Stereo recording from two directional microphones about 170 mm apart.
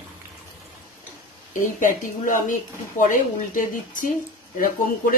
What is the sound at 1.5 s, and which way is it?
Speech, 50° left (ahead or behind).